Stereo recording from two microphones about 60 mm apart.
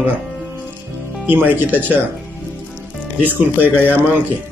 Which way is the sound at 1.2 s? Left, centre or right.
Right.